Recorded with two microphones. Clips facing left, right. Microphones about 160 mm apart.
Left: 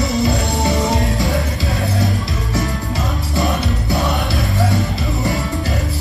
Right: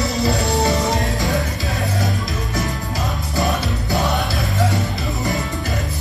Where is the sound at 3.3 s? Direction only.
Centre (ahead or behind).